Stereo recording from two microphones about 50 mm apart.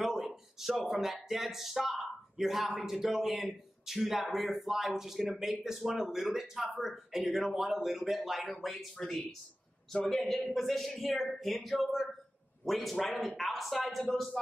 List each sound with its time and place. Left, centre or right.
0.0 s speech: centre